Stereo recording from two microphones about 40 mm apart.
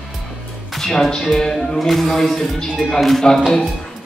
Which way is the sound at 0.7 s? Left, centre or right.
Centre.